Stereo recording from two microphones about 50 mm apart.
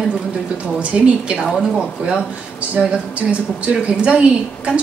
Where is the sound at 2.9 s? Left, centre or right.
Right.